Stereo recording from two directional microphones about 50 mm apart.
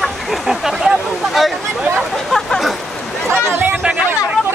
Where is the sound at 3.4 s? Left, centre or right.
Right.